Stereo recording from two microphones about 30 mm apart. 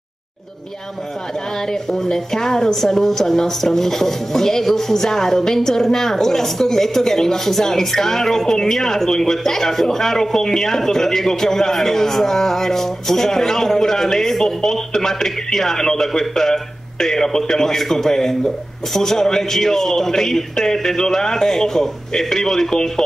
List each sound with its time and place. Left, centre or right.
2.0 s a woman's voice: centre